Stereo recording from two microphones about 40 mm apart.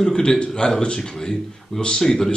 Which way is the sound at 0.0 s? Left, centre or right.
Centre.